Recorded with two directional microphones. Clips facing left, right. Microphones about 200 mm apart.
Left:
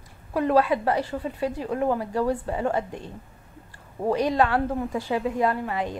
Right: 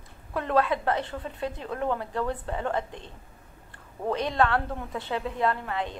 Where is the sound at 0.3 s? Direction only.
10° left (ahead or behind).